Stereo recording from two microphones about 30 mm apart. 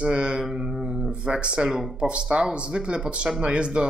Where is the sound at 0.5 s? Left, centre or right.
Right.